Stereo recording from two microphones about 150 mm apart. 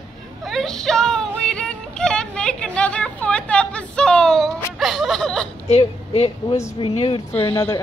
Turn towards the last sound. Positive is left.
turn(degrees=40)  # may be behind; listen again after turning